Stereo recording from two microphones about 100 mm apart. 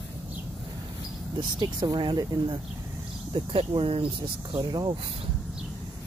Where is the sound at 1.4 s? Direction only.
45° right (ahead or behind).